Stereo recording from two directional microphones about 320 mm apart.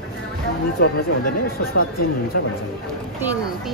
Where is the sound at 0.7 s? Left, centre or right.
Left.